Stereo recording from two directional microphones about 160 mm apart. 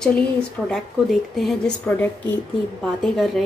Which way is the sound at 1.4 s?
5° left (ahead or behind).